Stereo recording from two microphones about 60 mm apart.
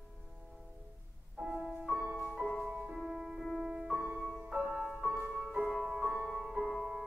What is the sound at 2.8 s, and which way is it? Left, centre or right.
Music, centre.